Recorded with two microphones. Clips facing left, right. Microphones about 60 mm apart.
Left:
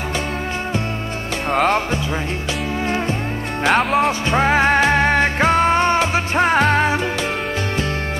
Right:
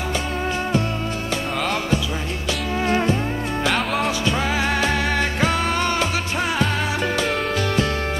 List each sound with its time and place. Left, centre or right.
1.5 s music: left
3.7 s music: left
4.3 s music: left